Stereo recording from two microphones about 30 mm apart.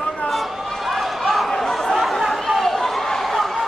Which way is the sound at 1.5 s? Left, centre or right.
Centre.